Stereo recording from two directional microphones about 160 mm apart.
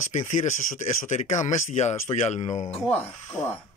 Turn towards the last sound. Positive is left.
turn(degrees=15)  # may be behind; listen again after turning